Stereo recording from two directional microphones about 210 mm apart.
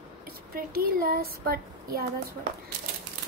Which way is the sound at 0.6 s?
45° right (ahead or behind).